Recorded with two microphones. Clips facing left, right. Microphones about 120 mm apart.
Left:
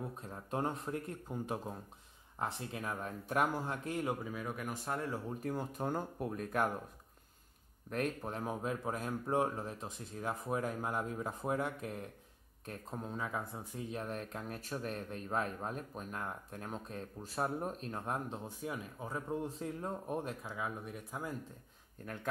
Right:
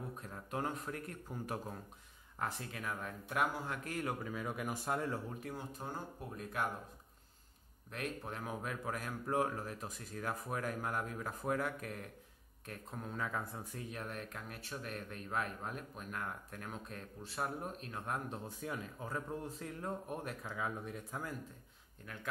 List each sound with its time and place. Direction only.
0.2 s speech: 30° left (ahead or behind)
4.2 s speech: 5° left (ahead or behind)
5.4 s speech: 50° left (ahead or behind)
8.2 s speech: 30° left (ahead or behind)
13.1 s speech: 15° left (ahead or behind)
13.8 s speech: 30° left (ahead or behind)
20.1 s speech: 30° left (ahead or behind)
20.4 s speech: 5° left (ahead or behind)
22.0 s speech: 40° left (ahead or behind)